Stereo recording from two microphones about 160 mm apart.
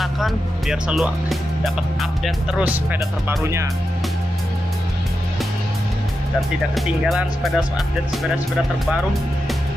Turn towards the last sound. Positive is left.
turn(degrees=0)  # may be behind; listen again after turning